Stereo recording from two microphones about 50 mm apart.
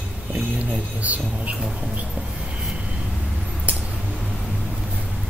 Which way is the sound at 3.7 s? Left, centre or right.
Right.